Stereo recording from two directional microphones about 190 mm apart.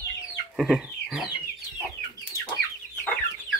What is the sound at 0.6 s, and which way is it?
Chicken, centre (ahead or behind).